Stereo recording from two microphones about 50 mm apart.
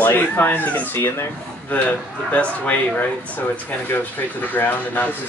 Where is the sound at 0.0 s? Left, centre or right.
Left.